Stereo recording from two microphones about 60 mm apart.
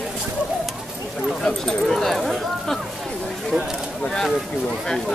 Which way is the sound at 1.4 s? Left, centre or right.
Centre.